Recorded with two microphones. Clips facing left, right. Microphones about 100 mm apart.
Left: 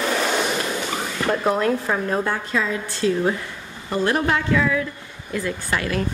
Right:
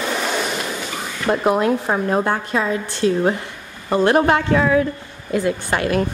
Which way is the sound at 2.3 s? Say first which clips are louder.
Right 3 dB; 35° right (ahead or behind).